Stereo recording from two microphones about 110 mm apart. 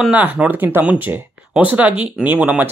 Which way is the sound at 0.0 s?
10° right (ahead or behind).